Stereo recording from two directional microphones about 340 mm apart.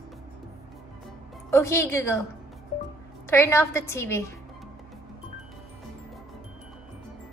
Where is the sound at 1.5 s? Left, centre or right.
Centre.